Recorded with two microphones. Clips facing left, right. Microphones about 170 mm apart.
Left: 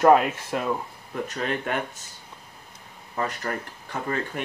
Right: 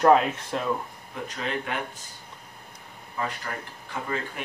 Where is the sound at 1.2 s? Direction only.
45° left (ahead or behind).